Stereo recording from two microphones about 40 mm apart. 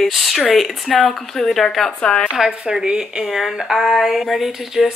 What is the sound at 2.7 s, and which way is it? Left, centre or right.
Speech, centre.